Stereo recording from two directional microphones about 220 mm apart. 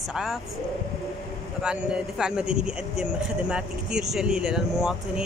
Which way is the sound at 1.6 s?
5° right (ahead or behind).